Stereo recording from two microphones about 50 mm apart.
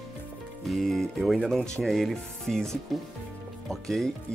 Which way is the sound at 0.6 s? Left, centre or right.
Centre.